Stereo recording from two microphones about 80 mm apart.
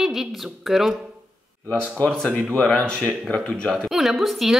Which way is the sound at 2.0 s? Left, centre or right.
Centre.